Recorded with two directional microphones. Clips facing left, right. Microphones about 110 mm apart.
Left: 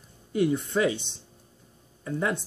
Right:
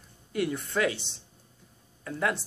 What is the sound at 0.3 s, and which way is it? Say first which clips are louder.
Speech: left 5 dB; 20° left (ahead or behind).